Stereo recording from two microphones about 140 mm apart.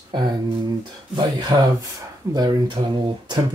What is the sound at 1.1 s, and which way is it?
Speech, 30° right (ahead or behind).